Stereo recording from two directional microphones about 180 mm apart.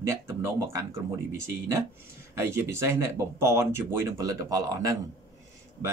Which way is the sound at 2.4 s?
15° right (ahead or behind).